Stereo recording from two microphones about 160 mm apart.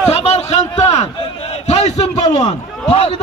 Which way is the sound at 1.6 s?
45° left (ahead or behind).